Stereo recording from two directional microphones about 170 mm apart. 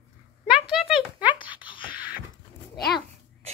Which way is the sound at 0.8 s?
5° right (ahead or behind).